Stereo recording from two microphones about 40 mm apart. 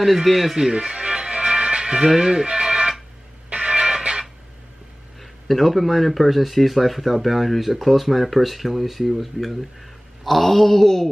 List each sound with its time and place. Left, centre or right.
0.0 s speech: centre
0.7 s music: right
5.2 s speech: centre